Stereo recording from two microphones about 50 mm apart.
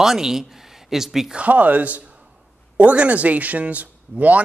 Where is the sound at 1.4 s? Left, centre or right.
Right.